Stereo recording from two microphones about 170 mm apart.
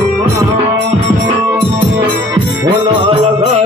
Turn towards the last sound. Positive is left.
turn(degrees=-35)  # may be behind; listen again after turning